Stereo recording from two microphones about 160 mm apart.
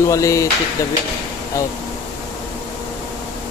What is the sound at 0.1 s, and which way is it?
Speech, 20° left (ahead or behind).